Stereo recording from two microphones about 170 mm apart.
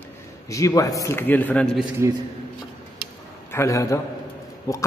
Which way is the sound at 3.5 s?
15° left (ahead or behind).